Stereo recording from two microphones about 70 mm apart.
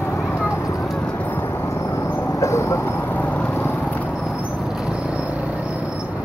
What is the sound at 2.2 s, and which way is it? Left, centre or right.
Vehicle, left.